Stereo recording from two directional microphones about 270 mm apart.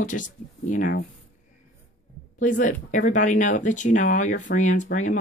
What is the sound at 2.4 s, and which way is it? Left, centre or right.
Speech, left.